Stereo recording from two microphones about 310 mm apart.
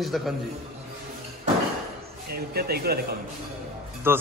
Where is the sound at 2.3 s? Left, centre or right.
Right.